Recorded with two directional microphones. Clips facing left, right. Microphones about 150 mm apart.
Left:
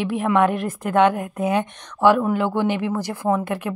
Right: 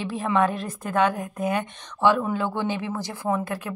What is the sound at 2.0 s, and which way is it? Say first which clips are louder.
A woman's voice: left 4 dB; 10° left (ahead or behind).